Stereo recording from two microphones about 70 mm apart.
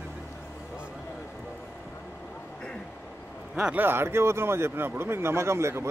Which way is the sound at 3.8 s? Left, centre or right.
Right.